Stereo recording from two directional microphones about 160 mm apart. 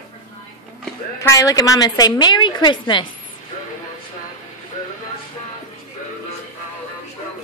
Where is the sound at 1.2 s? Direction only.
20° left (ahead or behind).